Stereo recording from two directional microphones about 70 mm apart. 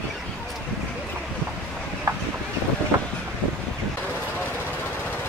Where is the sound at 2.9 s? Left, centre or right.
Right.